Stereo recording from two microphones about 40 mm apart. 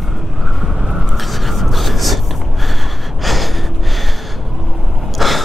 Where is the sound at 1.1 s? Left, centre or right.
Centre.